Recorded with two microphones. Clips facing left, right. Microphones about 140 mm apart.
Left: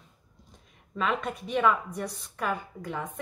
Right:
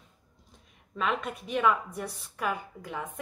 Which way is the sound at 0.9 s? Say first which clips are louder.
Left 1 dB; centre (ahead or behind).